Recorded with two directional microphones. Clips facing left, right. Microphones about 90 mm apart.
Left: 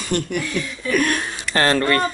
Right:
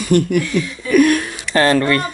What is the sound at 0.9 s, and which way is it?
Speech, 30° left (ahead or behind).